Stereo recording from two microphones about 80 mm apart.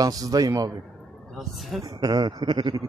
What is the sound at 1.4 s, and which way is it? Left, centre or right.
Speech, centre.